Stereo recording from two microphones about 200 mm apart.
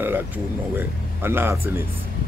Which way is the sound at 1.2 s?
10° right (ahead or behind).